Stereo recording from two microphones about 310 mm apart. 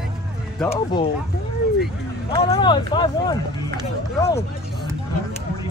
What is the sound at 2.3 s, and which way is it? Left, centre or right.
Speech, centre.